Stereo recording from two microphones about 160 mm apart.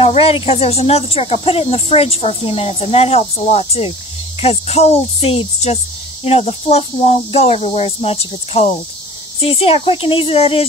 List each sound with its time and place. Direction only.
0.0 s speech: 40° left (ahead or behind)